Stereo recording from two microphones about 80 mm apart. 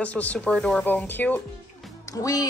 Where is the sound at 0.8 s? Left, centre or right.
Left.